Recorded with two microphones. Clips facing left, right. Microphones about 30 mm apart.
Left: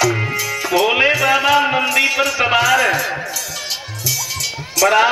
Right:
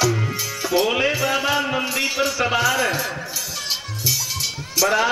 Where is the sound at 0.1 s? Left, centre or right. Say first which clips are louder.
Left 4 dB; left.